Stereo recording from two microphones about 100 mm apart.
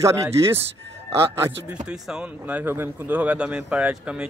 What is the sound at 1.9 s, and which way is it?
Speech, 10° right (ahead or behind).